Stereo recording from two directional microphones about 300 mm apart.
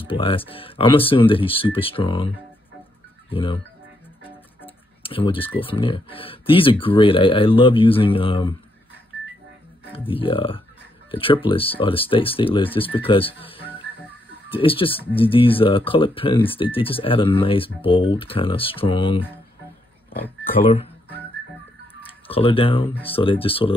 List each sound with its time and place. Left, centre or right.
0.0 s speech: centre
5.0 s speech: centre
9.9 s speech: centre
22.3 s speech: centre